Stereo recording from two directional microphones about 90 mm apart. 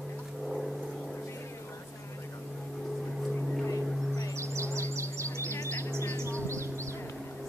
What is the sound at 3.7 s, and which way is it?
Vehicle, 40° left (ahead or behind).